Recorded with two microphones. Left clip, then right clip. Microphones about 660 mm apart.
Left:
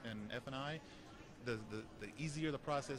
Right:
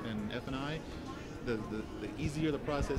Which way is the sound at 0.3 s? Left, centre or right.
Left.